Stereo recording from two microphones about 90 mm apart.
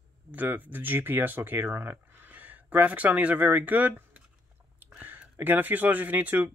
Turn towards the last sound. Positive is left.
turn(degrees=-20)  # may be behind; listen again after turning